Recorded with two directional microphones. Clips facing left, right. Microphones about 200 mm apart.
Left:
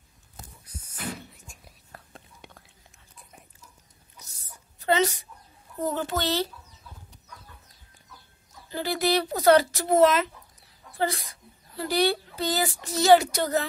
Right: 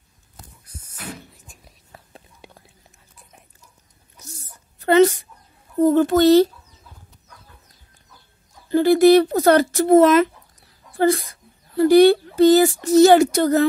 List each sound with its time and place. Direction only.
1.3 s whispering: 5° right (ahead or behind)
4.7 s a sound: 55° right (ahead or behind)
5.9 s speech: 50° right (ahead or behind)
8.6 s speech: 55° right (ahead or behind)
11.7 s speech: 50° right (ahead or behind)